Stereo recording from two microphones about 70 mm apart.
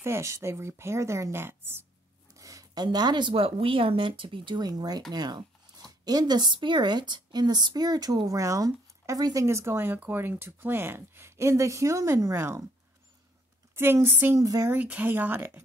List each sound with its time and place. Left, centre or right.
0.0 s speech: right
2.3 s a sound: right
2.8 s speech: right
4.6 s speech: right
13.7 s speech: right
14.4 s speech: right
14.7 s speech: right